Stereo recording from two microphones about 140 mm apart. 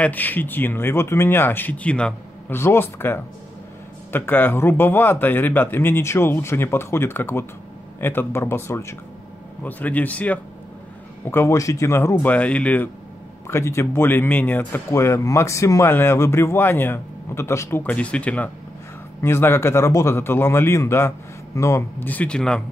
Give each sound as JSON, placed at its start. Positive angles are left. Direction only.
{"t": 0.0, "sound": "speech", "side_deg": 10}